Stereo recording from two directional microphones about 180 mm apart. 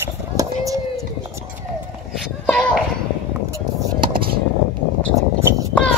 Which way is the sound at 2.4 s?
5° left (ahead or behind).